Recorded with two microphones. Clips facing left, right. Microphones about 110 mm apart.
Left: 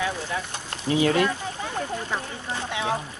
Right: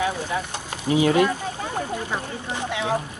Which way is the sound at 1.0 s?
20° right (ahead or behind).